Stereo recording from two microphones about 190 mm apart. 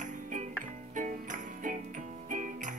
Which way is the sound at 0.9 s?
45° right (ahead or behind).